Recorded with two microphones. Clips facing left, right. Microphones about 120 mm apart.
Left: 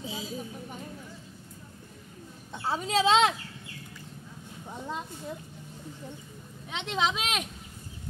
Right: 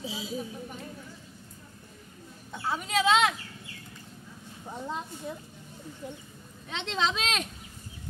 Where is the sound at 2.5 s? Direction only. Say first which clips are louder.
Left 2 dB; 30° left (ahead or behind).